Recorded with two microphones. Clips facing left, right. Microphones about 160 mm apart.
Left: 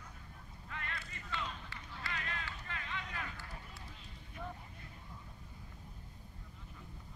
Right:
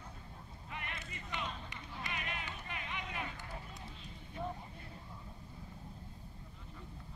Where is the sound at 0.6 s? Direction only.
20° right (ahead or behind).